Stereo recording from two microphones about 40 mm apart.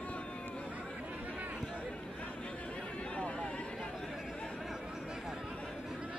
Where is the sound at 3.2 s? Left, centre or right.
Left.